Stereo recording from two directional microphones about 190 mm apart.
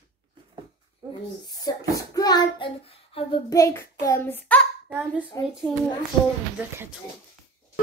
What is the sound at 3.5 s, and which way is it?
A child's voice, 15° left (ahead or behind).